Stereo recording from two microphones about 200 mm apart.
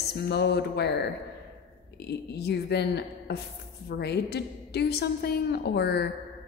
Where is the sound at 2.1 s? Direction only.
55° left (ahead or behind).